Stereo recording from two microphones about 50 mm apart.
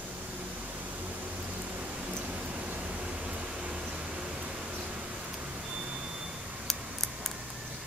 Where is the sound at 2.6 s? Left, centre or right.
Right.